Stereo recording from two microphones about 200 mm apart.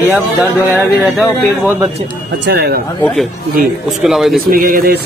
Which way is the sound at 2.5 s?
55° right (ahead or behind).